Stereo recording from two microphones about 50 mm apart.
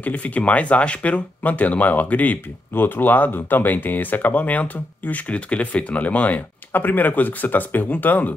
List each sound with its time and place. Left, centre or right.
0.0 s speech: left